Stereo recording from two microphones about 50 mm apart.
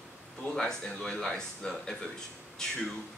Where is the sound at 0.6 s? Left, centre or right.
Centre.